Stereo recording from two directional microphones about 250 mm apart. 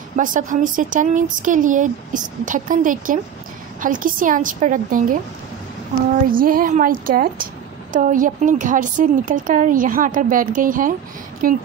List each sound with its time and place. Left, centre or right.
0.1 s a woman's voice: right
6.3 s a woman's voice: right